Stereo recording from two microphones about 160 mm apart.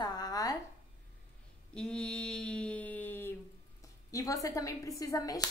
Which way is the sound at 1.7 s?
5° left (ahead or behind).